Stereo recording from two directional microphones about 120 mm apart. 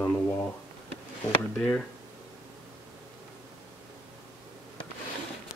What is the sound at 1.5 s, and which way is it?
Speech, 5° left (ahead or behind).